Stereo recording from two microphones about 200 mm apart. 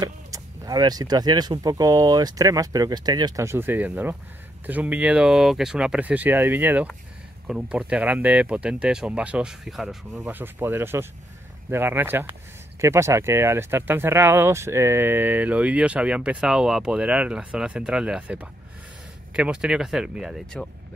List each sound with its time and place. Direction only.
0.0 s speech: 20° right (ahead or behind); by 20.6 s centre (ahead or behind)